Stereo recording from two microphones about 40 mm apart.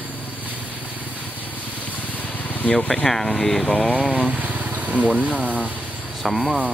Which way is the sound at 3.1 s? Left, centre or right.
Centre.